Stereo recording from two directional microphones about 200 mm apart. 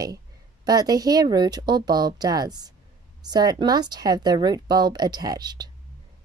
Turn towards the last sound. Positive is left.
turn(degrees=-20)  # may be behind; listen again after turning